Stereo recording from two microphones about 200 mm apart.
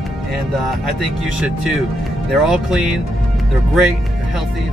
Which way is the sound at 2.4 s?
Centre (ahead or behind).